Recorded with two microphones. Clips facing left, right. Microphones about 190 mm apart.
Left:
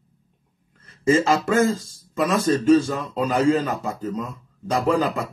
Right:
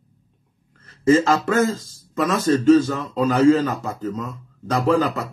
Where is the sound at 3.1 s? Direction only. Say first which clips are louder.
Right 4 dB; 15° left (ahead or behind).